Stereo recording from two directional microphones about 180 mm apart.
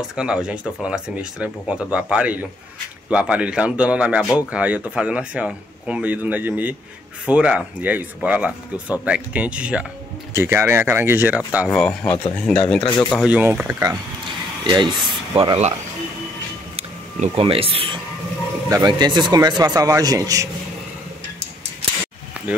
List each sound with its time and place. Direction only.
0.1 s speech: 5° right (ahead or behind)
11.7 s speech: 5° left (ahead or behind)
13.1 s speech: 5° right (ahead or behind)
14.6 s speech: 25° right (ahead or behind)
16.7 s speech: 35° right (ahead or behind); by 20.4 s 20° right (ahead or behind)